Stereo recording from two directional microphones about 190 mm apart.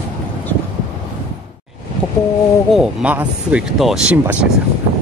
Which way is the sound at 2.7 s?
5° right (ahead or behind).